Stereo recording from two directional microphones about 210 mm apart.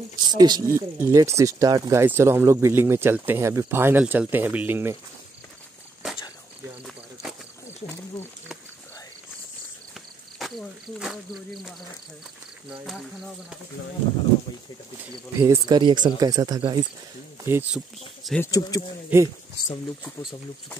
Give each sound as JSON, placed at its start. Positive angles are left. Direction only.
{"t": 0.2, "sound": "speech", "side_deg": -20}
{"t": 6.8, "sound": "a sound", "side_deg": 0}
{"t": 12.8, "sound": "speech", "side_deg": 0}
{"t": 15.3, "sound": "speech", "side_deg": -15}
{"t": 17.7, "sound": "speech", "side_deg": 0}
{"t": 18.4, "sound": "speech", "side_deg": 15}
{"t": 19.1, "sound": "speech", "side_deg": -10}